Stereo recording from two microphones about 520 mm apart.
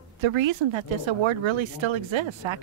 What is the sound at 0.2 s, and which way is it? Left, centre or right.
Speech, right.